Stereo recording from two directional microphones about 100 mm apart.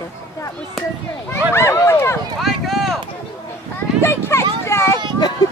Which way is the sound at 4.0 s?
25° left (ahead or behind).